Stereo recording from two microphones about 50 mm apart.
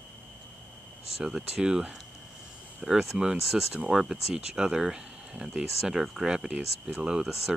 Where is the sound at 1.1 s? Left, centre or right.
Centre.